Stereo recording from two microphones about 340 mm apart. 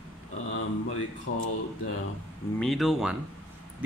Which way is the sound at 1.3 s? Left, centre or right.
Left.